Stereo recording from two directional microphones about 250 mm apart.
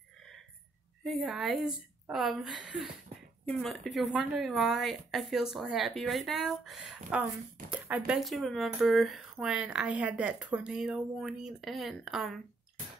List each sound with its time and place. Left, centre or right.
1.0 s speech: centre